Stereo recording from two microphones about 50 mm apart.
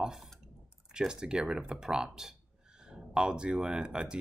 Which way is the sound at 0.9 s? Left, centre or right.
Centre.